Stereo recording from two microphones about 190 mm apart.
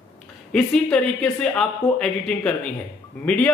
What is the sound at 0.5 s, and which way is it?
A man's voice, 5° left (ahead or behind).